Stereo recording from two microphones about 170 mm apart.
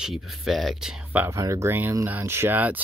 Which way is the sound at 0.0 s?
Centre (ahead or behind).